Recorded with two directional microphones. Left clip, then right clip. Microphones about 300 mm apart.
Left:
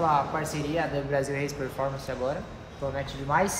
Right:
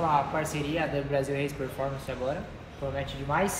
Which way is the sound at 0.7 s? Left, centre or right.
Centre.